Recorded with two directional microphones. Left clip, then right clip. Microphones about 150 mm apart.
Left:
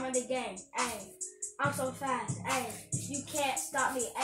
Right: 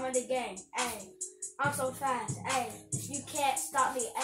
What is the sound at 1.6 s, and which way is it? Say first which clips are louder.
Speech: right 1 dB; 20° right (ahead or behind).